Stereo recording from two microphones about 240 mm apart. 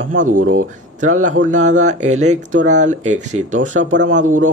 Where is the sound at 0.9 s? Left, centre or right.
Right.